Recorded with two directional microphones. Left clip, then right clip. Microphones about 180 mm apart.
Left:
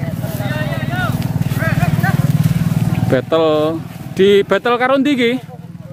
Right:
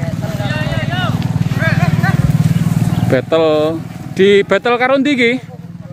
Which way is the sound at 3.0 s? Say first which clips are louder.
Right 1 dB; centre (ahead or behind).